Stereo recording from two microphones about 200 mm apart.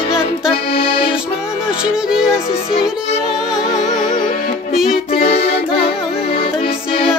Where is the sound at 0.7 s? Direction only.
25° left (ahead or behind).